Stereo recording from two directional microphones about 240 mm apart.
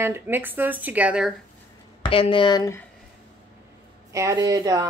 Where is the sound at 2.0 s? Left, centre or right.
Left.